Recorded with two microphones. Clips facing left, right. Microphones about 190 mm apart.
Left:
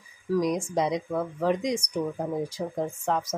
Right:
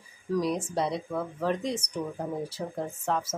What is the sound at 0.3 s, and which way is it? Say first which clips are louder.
Speech: left 3 dB; 10° left (ahead or behind).